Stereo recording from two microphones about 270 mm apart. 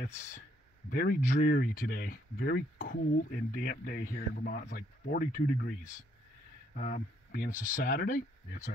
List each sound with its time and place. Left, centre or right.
0.0 s speech: left
6.7 s speech: left